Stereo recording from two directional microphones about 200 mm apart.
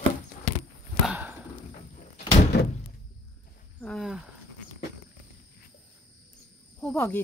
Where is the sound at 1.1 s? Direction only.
10° right (ahead or behind).